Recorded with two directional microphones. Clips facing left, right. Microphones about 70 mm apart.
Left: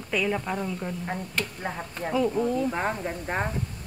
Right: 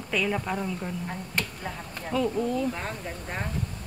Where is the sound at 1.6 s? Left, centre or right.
Left.